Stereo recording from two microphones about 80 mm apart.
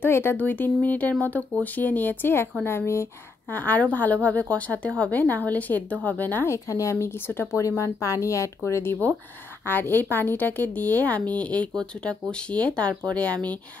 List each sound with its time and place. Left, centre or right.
0.0 s a woman's voice: left
3.5 s a woman's voice: left
9.7 s a woman's voice: left